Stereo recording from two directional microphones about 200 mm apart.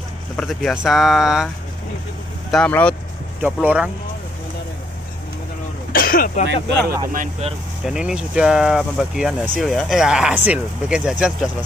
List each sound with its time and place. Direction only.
0.4 s speech: centre (ahead or behind)
2.5 s speech: 5° left (ahead or behind)
3.4 s speech: 10° right (ahead or behind)
5.9 s speech: 45° left (ahead or behind)
7.1 s speech: 35° right (ahead or behind)
7.8 s speech: 5° right (ahead or behind)